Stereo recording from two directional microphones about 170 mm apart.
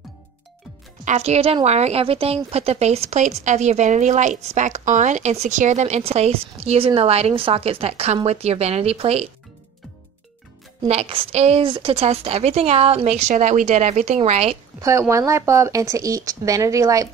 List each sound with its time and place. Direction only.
1.0 s a woman's voice: 40° right (ahead or behind)
10.9 s a woman's voice: 35° right (ahead or behind)
14.8 s speech: 15° right (ahead or behind)